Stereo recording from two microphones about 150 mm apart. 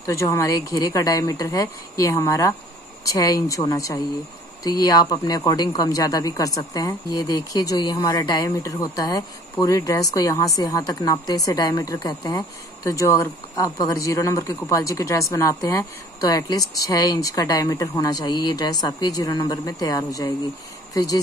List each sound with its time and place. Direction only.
0.0 s speech: 20° left (ahead or behind)